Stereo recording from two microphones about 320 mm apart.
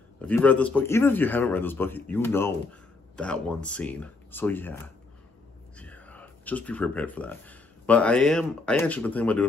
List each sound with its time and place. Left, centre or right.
0.2 s a man's voice: centre